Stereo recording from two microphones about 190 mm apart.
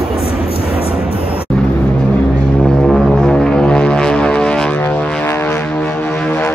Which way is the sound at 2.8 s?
Centre (ahead or behind).